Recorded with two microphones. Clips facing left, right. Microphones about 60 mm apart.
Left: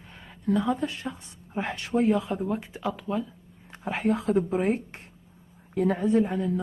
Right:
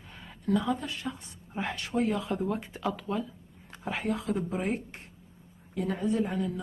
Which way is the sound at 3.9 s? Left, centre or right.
Left.